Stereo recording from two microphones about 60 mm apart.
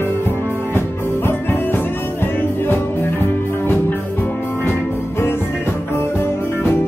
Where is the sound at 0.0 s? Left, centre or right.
Left.